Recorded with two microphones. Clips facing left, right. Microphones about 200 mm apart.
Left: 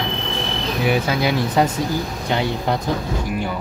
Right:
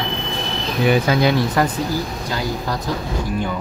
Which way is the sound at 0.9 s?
5° left (ahead or behind).